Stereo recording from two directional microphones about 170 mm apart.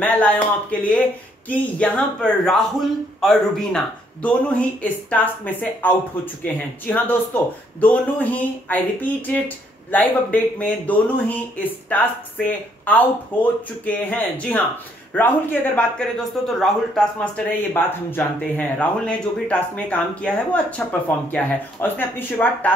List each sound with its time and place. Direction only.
0.0 s speech: 10° left (ahead or behind)
17.7 s speech: 10° left (ahead or behind)